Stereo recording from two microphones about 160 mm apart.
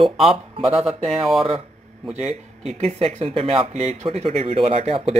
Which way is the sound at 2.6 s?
40° right (ahead or behind).